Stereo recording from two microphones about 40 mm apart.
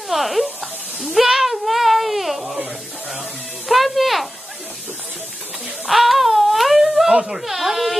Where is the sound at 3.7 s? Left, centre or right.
Centre.